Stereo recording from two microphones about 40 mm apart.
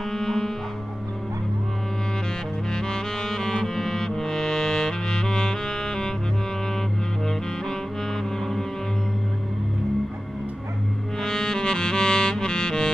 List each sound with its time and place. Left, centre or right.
0.1 s music: centre
2.7 s saxophone: centre
3.6 s music: centre
11.1 s music: centre